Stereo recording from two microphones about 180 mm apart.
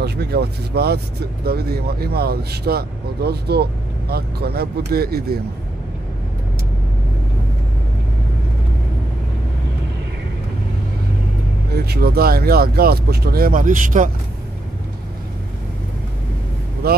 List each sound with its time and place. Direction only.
0.0 s speech: 65° right (ahead or behind)
11.7 s speech: 60° right (ahead or behind)
16.8 s speech: 60° right (ahead or behind)